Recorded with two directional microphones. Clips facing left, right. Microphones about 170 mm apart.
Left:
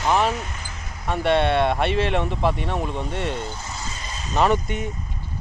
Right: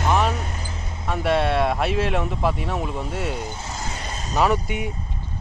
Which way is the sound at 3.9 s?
60° right (ahead or behind).